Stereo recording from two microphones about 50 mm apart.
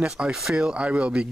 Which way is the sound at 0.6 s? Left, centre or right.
Right.